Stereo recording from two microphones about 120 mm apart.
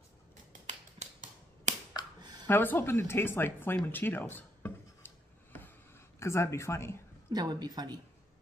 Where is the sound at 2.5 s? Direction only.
20° left (ahead or behind).